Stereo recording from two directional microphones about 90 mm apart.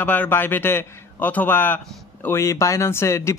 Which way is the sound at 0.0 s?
20° left (ahead or behind).